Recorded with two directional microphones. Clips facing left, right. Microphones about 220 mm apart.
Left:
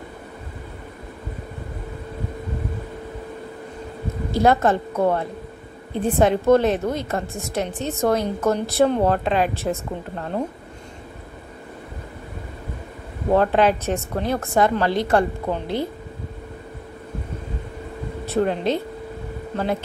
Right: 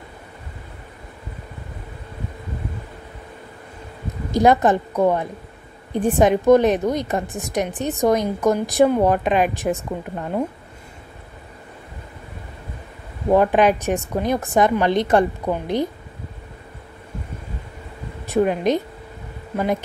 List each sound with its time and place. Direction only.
4.3 s a woman's voice: 15° right (ahead or behind)
13.3 s a woman's voice: 15° right (ahead or behind)
18.2 s speech: 15° right (ahead or behind)